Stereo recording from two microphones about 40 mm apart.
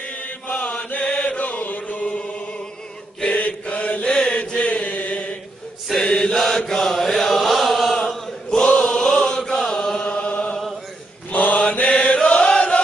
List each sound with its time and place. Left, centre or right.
0.0 s mantra: left
1.2 s chant: left
3.3 s mantra: left
4.6 s chant: left
5.9 s chant: centre
6.3 s mantra: centre
7.0 s chant: centre
8.6 s chant: left
11.3 s mantra: left
11.8 s chant: left